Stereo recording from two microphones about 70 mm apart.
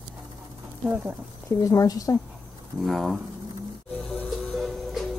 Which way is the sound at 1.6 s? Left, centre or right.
Left.